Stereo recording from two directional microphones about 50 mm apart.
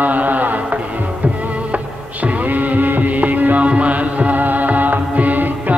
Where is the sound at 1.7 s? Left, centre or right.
Right.